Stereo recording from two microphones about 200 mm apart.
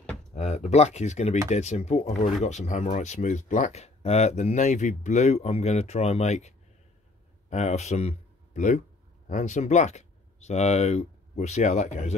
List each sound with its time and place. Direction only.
0.3 s speech: 35° left (ahead or behind)